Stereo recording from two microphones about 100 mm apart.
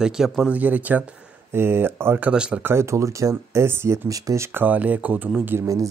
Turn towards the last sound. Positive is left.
turn(degrees=-20)  # may be behind; listen again after turning